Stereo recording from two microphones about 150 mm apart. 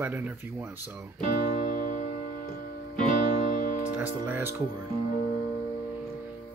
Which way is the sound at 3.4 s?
55° left (ahead or behind).